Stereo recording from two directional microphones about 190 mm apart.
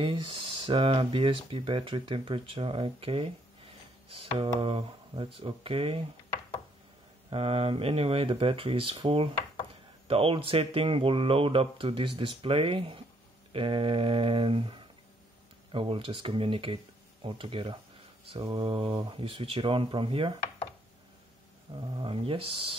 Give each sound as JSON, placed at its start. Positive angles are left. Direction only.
{"t": 0.0, "sound": "speech", "side_deg": -25}
{"t": 7.2, "sound": "speech", "side_deg": -30}
{"t": 21.7, "sound": "speech", "side_deg": -25}